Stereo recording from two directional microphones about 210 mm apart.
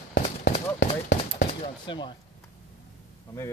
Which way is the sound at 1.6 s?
25° left (ahead or behind).